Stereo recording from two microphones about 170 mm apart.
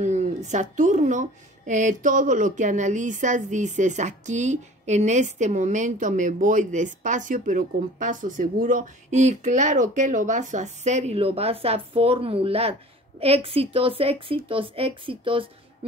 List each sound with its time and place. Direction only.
0.0 s a woman's voice: 45° right (ahead or behind)